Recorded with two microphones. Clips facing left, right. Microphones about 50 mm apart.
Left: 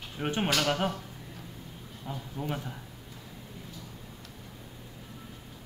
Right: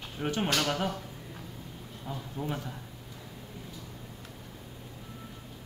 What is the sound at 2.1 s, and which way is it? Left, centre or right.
Speech, centre.